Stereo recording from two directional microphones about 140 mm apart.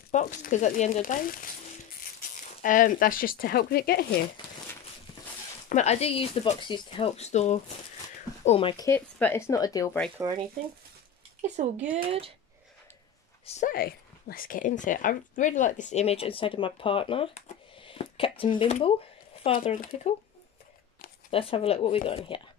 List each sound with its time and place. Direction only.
0.1 s speech: 60° left (ahead or behind); by 1.5 s 80° left
2.3 s speech: 70° left (ahead or behind); by 4.0 s 90° left
5.7 s speech: 55° left (ahead or behind); by 7.1 s 40° left (ahead or behind)
7.2 s speech: 55° left (ahead or behind)
8.5 s speech: 40° left (ahead or behind)
8.7 s speech: 20° left (ahead or behind)
10.2 s speech: 20° right (ahead or behind)
11.4 s speech: 55° right (ahead or behind)
12.0 s speech: 40° right (ahead or behind)
13.6 s speech: 85° left; by 17.4 s 40° left (ahead or behind)
17.8 s a sound: 40° left (ahead or behind)
18.4 s speech: 40° left (ahead or behind)
19.7 s speech: 70° left (ahead or behind)
21.3 s speech: 40° left (ahead or behind)